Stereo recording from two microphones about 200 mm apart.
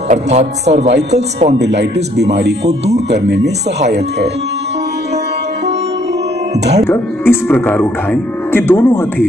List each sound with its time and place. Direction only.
0.1 s a man's voice: 35° right (ahead or behind)
1.6 s speech: 60° right (ahead or behind)
3.1 s speech: 60° right (ahead or behind)
6.9 s speech: 10° left (ahead or behind)